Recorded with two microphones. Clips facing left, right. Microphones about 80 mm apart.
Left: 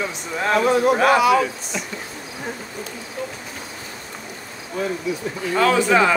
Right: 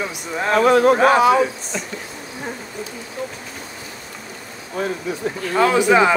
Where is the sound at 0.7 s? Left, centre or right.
Right.